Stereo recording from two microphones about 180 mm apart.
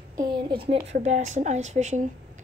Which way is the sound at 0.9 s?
40° right (ahead or behind).